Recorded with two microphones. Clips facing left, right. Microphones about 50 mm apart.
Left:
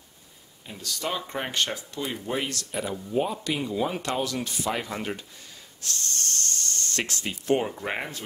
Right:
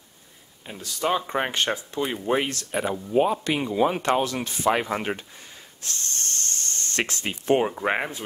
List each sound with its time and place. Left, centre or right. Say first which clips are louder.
0.7 s speech: right 6 dB; right
2.7 s speech: right 5 dB; right